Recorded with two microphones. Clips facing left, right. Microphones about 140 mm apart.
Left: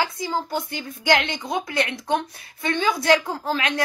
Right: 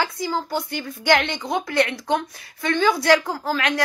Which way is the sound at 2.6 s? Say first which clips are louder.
Right 2 dB; 20° left (ahead or behind).